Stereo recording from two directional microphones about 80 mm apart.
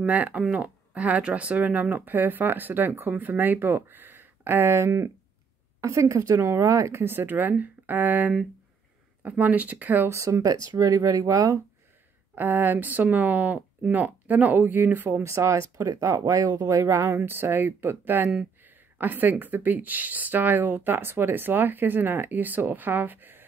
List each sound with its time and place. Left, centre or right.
0.0 s speech: centre
10.1 s speech: right
12.4 s speech: right